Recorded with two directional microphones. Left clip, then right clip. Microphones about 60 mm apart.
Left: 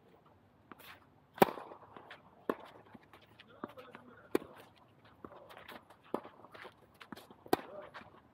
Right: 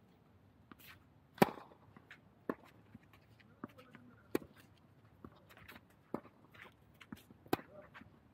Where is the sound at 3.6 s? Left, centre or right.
Right.